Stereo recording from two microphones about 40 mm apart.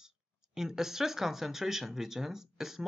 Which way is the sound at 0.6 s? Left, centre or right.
Centre.